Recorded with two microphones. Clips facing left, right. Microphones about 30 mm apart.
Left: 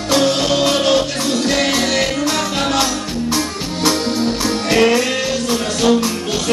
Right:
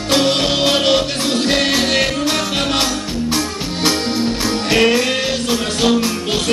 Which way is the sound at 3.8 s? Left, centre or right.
Right.